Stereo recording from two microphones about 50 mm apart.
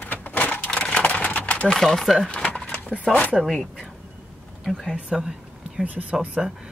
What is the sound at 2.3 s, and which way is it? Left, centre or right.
Speech, left.